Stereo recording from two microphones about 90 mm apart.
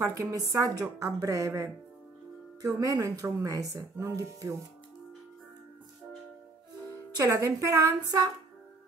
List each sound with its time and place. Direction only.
0.0 s a woman's voice: 40° right (ahead or behind)
7.3 s a woman's voice: 40° right (ahead or behind)